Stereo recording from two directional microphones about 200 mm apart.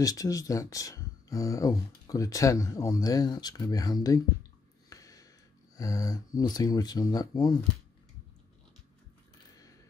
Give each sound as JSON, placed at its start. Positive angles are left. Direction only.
{"t": 0.0, "sound": "speech", "side_deg": 15}
{"t": 4.8, "sound": "a sound", "side_deg": 15}
{"t": 5.8, "sound": "speech", "side_deg": 15}